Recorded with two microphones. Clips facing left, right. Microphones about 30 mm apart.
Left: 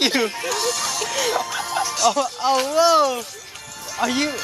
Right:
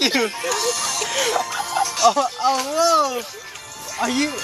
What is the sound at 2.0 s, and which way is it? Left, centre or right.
Speech, centre.